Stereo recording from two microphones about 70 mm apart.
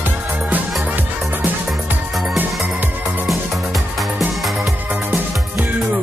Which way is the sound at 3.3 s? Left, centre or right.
Centre.